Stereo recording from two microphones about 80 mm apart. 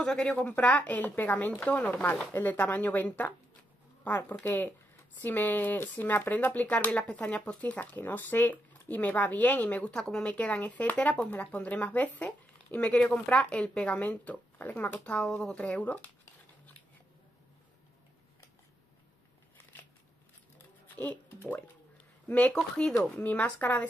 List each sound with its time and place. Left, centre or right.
0.0 s speech: centre
9.9 s speech: centre
10.2 s speech: centre
20.5 s a sound: left
22.3 s speech: centre